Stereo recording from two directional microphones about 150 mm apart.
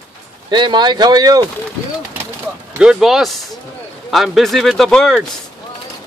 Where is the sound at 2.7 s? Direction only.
5° right (ahead or behind).